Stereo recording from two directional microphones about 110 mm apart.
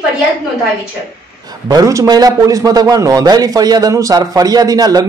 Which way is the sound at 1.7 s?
35° right (ahead or behind).